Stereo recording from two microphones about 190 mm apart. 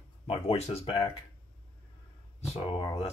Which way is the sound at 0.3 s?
30° left (ahead or behind).